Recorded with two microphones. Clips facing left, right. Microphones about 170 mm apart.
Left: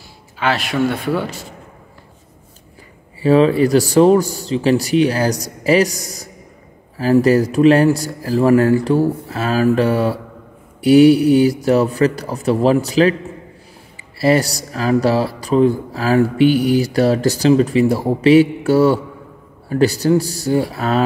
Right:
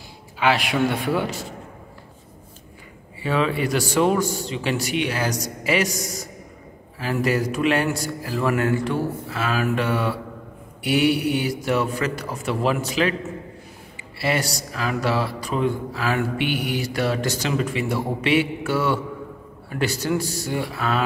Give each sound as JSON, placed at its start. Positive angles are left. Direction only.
{"t": 0.4, "sound": "speech", "side_deg": -15}
{"t": 3.2, "sound": "speech", "side_deg": 35}
{"t": 14.1, "sound": "speech", "side_deg": 40}